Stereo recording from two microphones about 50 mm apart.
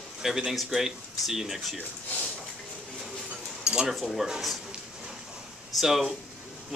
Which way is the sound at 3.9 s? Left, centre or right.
Centre.